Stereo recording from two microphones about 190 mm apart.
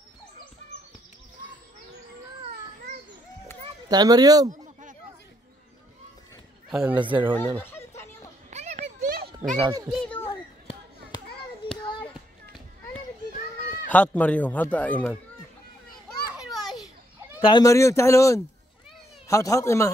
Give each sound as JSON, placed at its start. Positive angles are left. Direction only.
{"t": 3.6, "sound": "speech", "side_deg": -20}
{"t": 6.7, "sound": "speech", "side_deg": -5}
{"t": 7.3, "sound": "fowl", "side_deg": 10}
{"t": 8.5, "sound": "a sound", "side_deg": -35}
{"t": 9.6, "sound": "speech", "side_deg": -15}
{"t": 9.8, "sound": "a child's voice", "side_deg": 0}
{"t": 10.2, "sound": "children playing", "side_deg": 30}
{"t": 11.6, "sound": "a sound", "side_deg": 25}
{"t": 13.8, "sound": "speech", "side_deg": 10}
{"t": 16.3, "sound": "children playing", "side_deg": 0}
{"t": 17.4, "sound": "speech", "side_deg": 20}